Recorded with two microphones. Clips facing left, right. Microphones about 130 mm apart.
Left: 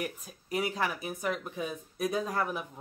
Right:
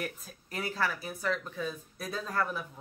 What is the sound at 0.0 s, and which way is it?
Speech, 10° left (ahead or behind).